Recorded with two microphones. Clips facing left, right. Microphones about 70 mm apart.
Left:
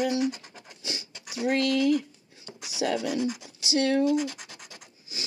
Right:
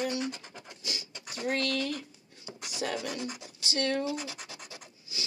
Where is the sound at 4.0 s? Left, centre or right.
Centre.